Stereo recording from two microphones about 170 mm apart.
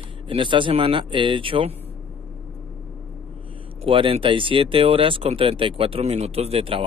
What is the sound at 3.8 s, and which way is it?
Speech, 30° right (ahead or behind).